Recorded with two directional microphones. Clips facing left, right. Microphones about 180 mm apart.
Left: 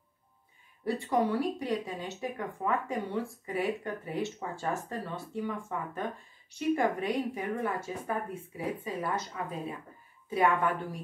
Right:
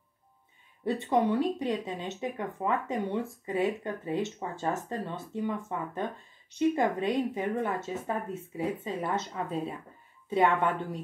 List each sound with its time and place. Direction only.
0.8 s speech: 20° right (ahead or behind)